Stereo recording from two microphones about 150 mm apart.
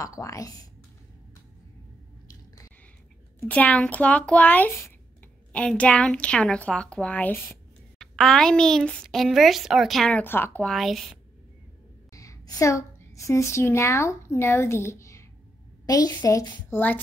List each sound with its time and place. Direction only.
0.0 s a woman's voice: 20° left (ahead or behind)
2.2 s squish: 20° left (ahead or behind)
3.3 s a woman's voice: 10° left (ahead or behind)
10.7 s a woman's voice: centre (ahead or behind)
12.1 s a woman's voice: 20° left (ahead or behind)